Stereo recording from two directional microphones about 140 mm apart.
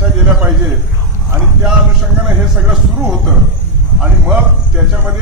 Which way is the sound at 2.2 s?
5° right (ahead or behind).